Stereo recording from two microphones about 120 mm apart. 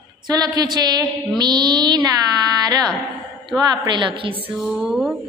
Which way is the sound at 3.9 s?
45° right (ahead or behind).